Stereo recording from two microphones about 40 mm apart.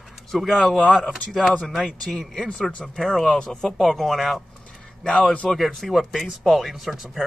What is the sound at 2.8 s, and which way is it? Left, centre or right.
Speech, centre.